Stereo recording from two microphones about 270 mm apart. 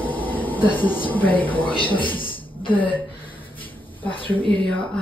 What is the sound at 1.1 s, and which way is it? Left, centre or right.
Speech, centre.